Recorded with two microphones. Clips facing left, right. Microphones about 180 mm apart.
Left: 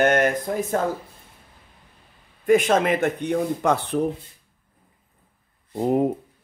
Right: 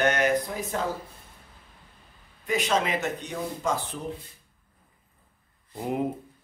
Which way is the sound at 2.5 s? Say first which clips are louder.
Left 8 dB; 55° left (ahead or behind).